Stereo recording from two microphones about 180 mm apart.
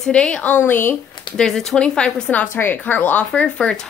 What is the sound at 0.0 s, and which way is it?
A woman's voice, 5° left (ahead or behind).